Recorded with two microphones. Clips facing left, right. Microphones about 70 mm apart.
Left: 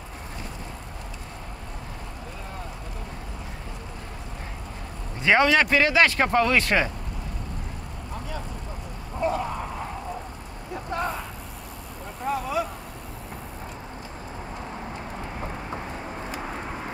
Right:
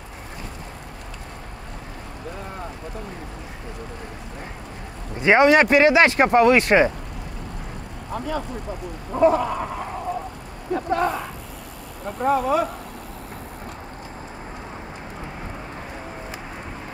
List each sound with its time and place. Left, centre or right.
5.2 s speech: right
8.1 s speech: right
10.7 s speech: right
12.2 s speech: right